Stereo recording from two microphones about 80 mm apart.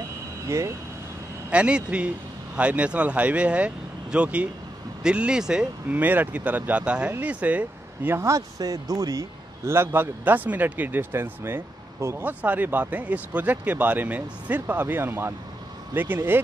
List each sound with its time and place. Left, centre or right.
0.5 s speech: right
1.5 s a man's voice: centre
5.9 s speech: right
9.6 s speech: right
9.9 s speech: right
12.2 s speech: right